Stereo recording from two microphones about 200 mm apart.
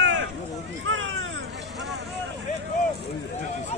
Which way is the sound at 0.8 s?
75° right (ahead or behind).